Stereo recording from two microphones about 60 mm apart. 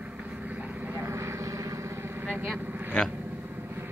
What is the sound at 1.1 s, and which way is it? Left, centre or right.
Vehicle, right.